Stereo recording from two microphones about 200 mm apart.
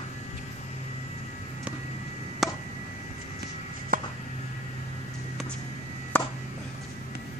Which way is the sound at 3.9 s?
45° right (ahead or behind).